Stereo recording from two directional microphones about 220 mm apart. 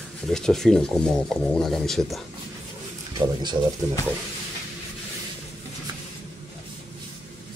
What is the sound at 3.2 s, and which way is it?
Speech, 20° right (ahead or behind).